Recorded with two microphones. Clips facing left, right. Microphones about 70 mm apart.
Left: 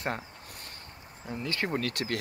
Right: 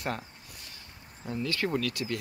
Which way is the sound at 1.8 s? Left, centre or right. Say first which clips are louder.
Even; left.